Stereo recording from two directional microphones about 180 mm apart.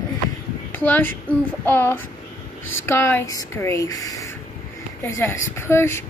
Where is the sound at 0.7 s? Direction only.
10° left (ahead or behind).